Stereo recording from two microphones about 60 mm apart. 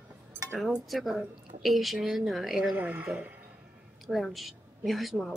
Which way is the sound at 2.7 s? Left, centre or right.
Right.